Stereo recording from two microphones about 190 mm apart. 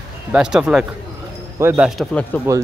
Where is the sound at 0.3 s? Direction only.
5° right (ahead or behind).